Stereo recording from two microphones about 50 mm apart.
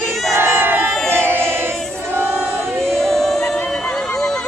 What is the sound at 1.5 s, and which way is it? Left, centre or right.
Choir, right.